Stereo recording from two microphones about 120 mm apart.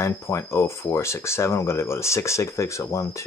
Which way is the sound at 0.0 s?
25° left (ahead or behind).